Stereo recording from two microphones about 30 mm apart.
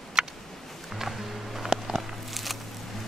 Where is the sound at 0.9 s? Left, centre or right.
Centre.